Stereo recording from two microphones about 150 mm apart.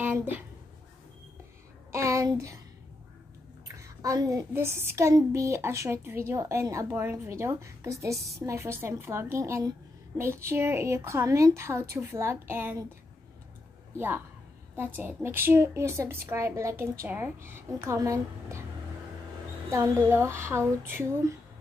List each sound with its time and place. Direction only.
0.0 s a woman's voice: 10° right (ahead or behind)
1.9 s a sound: 20° right (ahead or behind)
3.8 s a woman's voice: 25° right (ahead or behind)
13.9 s a woman's voice: 15° right (ahead or behind)
19.7 s a woman's voice: 20° right (ahead or behind)